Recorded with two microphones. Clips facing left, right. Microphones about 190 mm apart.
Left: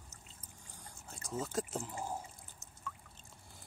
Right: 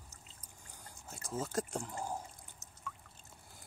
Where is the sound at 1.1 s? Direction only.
Centre (ahead or behind).